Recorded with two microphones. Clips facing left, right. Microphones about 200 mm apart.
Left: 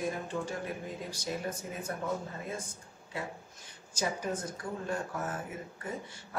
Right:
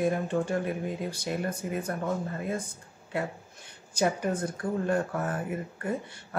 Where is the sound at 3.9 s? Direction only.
60° right (ahead or behind).